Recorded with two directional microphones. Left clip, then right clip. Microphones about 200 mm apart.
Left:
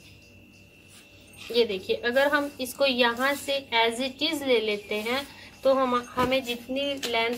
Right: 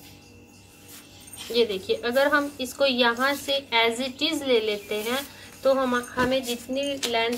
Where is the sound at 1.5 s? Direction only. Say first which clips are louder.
Right 1 dB; 5° left (ahead or behind).